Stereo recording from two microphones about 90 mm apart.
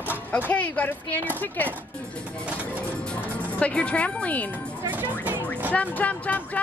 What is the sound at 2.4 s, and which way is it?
Music, 20° right (ahead or behind).